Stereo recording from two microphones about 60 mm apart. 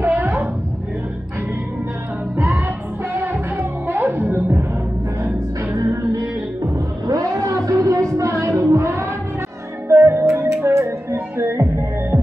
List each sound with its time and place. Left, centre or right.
0.0 s roaring cats: right
2.3 s music: right
6.1 s music: right
9.8 s music: right
11.3 s music: right